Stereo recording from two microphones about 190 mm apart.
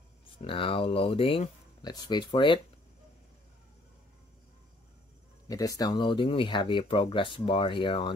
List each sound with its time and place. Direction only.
0.4 s speech: 30° left (ahead or behind)
5.5 s speech: 20° left (ahead or behind)